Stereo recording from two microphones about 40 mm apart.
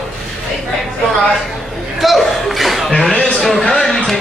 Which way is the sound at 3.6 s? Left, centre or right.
Left.